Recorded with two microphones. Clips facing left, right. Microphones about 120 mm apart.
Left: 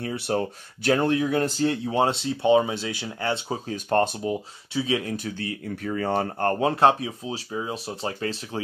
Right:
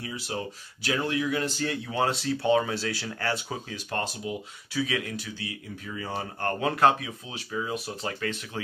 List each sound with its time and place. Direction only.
0.0 s speech: 50° left (ahead or behind)
1.6 s speech: 30° left (ahead or behind)
3.6 s speech: 45° left (ahead or behind)
4.7 s speech: 25° left (ahead or behind)
5.1 s speech: 50° left (ahead or behind)
6.4 s speech: 30° left (ahead or behind)